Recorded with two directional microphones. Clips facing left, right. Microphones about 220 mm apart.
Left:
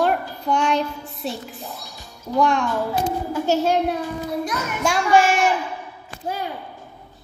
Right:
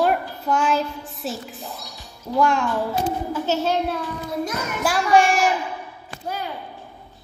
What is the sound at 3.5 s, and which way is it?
Speech, 10° left (ahead or behind).